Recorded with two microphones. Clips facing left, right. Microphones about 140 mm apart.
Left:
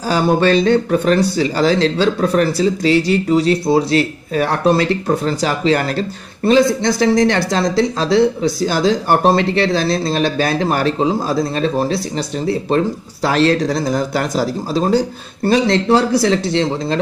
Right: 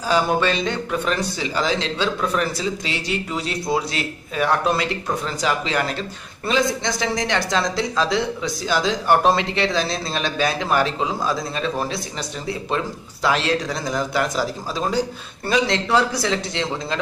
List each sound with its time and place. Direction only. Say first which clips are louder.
0.1 s speech: left 6 dB; 40° left (ahead or behind)